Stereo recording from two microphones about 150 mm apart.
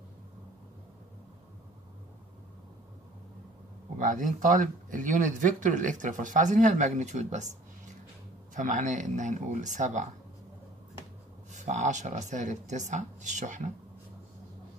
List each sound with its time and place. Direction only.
4.0 s speech: 60° right (ahead or behind)
8.5 s speech: 55° right (ahead or behind)
11.5 s speech: 55° right (ahead or behind)